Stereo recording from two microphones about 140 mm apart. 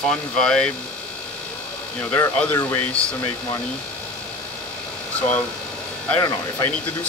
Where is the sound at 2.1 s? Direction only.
15° left (ahead or behind).